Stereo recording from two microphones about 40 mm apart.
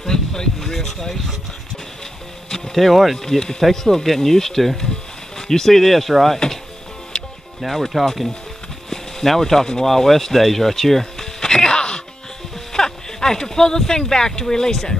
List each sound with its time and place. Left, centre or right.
0.0 s speech: centre
2.5 s speech: centre
3.3 s speech: centre
7.6 s speech: centre
11.3 s music: centre
12.7 s speech: centre